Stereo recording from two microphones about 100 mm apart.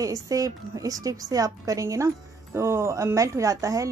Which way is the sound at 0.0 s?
35° right (ahead or behind).